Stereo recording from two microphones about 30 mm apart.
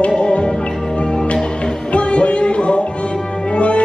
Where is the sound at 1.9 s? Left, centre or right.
Left.